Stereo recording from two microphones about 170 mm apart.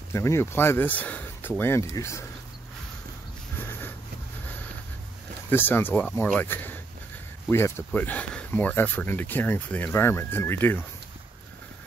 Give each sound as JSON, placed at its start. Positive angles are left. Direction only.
{"t": 0.1, "sound": "speech", "side_deg": 15}
{"t": 5.5, "sound": "speech", "side_deg": 10}